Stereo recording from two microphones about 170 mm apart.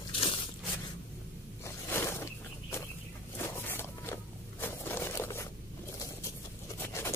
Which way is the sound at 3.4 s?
15° left (ahead or behind).